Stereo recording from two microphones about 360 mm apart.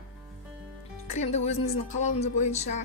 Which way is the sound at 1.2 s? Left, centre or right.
Centre.